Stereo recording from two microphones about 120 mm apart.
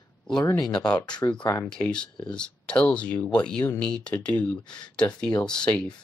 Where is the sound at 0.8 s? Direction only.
10° left (ahead or behind).